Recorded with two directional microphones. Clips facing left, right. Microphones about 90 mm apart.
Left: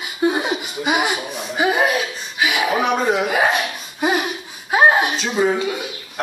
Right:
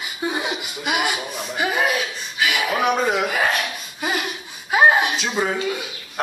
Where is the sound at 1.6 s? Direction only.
15° left (ahead or behind).